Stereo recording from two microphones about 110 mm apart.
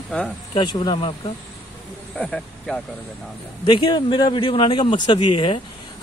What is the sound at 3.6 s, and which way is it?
Speech, 45° left (ahead or behind).